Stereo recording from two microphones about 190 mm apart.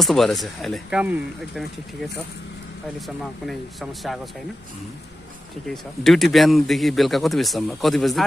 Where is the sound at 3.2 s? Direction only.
Centre (ahead or behind).